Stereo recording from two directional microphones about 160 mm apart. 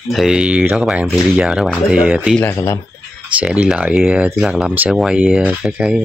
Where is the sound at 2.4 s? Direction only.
20° left (ahead or behind).